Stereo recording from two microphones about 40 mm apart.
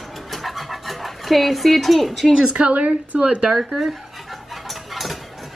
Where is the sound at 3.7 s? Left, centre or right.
Centre.